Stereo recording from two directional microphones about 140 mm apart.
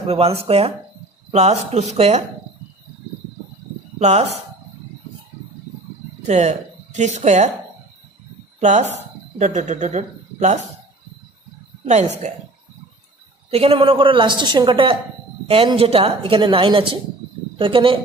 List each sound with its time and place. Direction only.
0.0 s speech: 45° right (ahead or behind)
4.0 s speech: 50° right (ahead or behind)
6.2 s speech: 55° right (ahead or behind)
8.5 s speech: 55° right (ahead or behind)
12.2 s speech: 55° right (ahead or behind)
13.5 s a man's voice: 45° right (ahead or behind)